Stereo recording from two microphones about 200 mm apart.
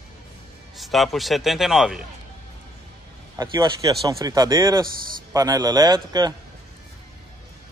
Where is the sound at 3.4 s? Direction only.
20° right (ahead or behind).